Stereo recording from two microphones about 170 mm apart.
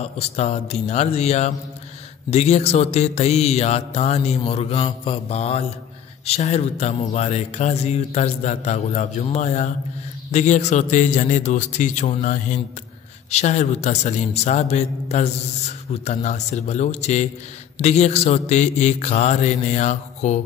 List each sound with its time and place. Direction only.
0.0 s speech: 40° left (ahead or behind)